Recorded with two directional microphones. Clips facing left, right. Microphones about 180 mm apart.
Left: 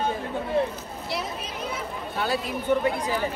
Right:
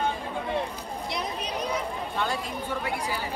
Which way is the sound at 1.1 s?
5° left (ahead or behind).